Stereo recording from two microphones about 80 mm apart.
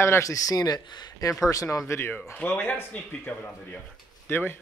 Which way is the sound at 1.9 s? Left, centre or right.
Left.